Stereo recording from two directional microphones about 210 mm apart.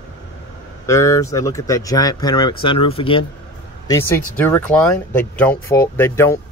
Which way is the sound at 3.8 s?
15° left (ahead or behind).